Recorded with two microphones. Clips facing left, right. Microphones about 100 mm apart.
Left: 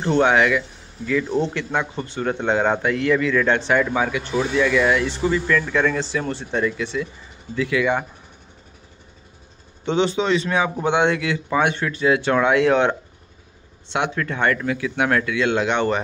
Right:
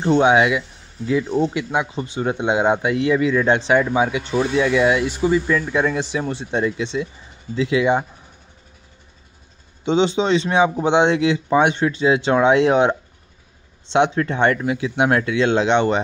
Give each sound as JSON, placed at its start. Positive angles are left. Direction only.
{"t": 0.0, "sound": "speech", "side_deg": -15}
{"t": 9.8, "sound": "speech", "side_deg": -20}
{"t": 13.9, "sound": "speech", "side_deg": -25}